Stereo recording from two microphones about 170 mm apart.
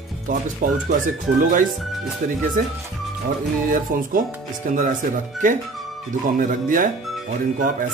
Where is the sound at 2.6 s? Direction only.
55° right (ahead or behind).